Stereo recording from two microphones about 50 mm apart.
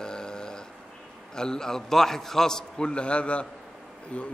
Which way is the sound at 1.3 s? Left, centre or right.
Centre.